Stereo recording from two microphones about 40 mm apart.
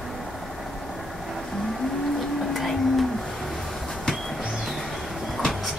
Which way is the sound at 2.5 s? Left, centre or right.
Centre.